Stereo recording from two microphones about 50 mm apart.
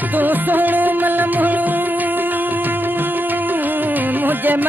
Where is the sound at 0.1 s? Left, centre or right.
Right.